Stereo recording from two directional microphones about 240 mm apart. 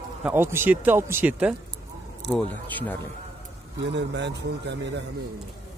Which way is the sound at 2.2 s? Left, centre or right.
Right.